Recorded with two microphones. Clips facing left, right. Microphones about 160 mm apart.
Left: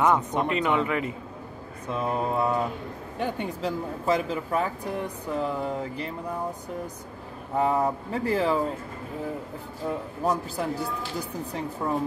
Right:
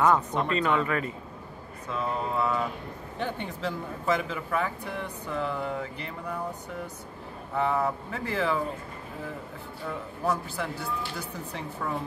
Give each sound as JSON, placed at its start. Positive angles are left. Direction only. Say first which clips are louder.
{"t": 0.0, "sound": "speech", "louder": "left 1 dB", "side_deg": 20}
{"t": 3.6, "sound": "speech", "louder": "left 2 dB", "side_deg": 35}
{"t": 7.5, "sound": "speech", "louder": "left 3 dB", "side_deg": 35}
{"t": 10.5, "sound": "speech", "louder": "left 4 dB", "side_deg": 35}